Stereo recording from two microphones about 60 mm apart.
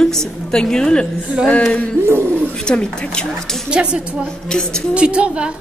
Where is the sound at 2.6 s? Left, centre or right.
Centre.